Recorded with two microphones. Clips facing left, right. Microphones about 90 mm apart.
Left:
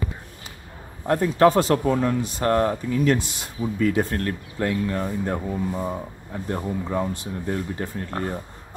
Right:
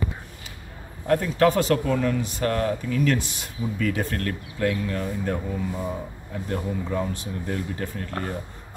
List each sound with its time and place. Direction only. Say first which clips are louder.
1.0 s speech: left 2 dB; 30° left (ahead or behind)